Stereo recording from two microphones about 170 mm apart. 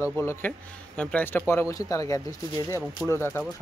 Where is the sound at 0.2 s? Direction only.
10° left (ahead or behind).